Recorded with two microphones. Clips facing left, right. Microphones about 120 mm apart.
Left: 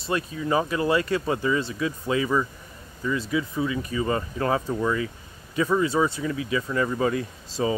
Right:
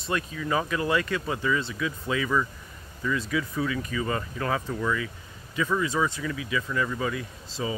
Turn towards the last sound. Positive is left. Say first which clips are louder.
# left 6 dB
turn(degrees=35)  # may be behind; listen again after turning